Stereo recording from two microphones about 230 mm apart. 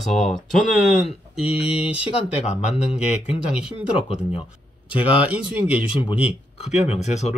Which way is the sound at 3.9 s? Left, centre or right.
Left.